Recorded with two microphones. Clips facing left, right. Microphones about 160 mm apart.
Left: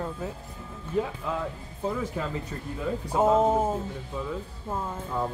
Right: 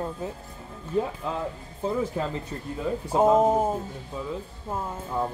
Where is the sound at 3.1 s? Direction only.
20° right (ahead or behind).